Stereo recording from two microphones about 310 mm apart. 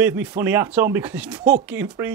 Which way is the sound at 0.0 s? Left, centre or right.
Centre.